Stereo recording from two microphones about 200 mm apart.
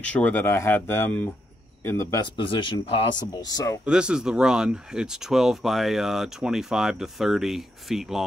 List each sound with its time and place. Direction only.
0.0 s speech: 5° left (ahead or behind)
3.8 s speech: 5° right (ahead or behind)